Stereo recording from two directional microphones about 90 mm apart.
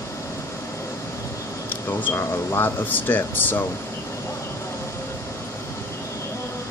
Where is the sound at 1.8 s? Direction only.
20° left (ahead or behind).